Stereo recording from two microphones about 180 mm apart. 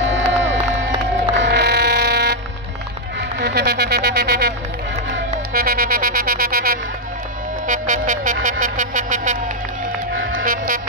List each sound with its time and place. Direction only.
0.0 s crowd: 90° right
1.3 s mechanisms: 70° right (ahead or behind)
3.2 s speech: 70° right (ahead or behind)
5.5 s music: 55° right (ahead or behind)